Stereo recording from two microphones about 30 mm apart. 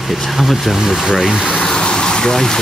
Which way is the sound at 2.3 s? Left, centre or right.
Centre.